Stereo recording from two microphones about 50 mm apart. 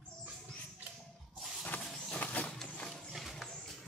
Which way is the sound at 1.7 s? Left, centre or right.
Left.